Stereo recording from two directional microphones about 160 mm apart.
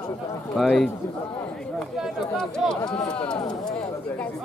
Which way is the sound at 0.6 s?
Centre (ahead or behind).